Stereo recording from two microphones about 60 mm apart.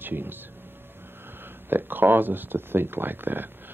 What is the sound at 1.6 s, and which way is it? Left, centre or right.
Speech, right.